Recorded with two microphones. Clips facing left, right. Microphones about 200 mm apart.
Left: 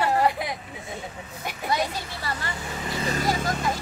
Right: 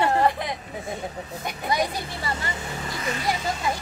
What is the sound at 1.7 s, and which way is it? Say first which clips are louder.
Speech: right 1 dB; 15° right (ahead or behind).